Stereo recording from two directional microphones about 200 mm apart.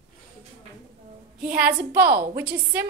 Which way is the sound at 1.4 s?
5° right (ahead or behind).